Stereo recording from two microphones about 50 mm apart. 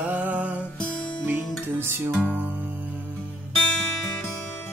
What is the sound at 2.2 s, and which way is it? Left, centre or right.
Music, right.